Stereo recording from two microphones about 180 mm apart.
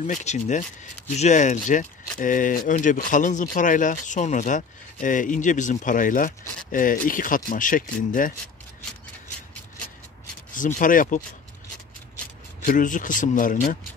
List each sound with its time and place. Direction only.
0.0 s speech: 40° left (ahead or behind)
10.5 s speech: 50° left (ahead or behind)
12.6 s speech: 45° left (ahead or behind)